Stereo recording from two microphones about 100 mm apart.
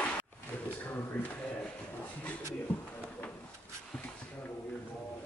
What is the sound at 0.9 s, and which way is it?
Speech, 20° left (ahead or behind).